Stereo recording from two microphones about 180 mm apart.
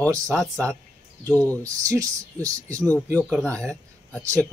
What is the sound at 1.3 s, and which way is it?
Speech, 10° left (ahead or behind).